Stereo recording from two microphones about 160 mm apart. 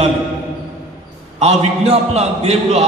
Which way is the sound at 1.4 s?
40° right (ahead or behind).